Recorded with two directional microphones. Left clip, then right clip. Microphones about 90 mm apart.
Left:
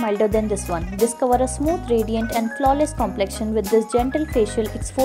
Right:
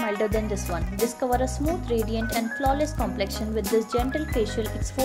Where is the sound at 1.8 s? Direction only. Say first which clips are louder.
Left 6 dB; 30° left (ahead or behind).